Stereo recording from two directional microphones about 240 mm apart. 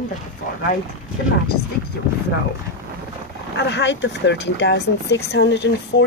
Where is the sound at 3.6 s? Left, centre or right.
Left.